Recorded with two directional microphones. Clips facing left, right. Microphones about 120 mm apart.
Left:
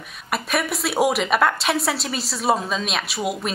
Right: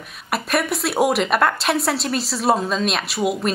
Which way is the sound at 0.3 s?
Centre (ahead or behind).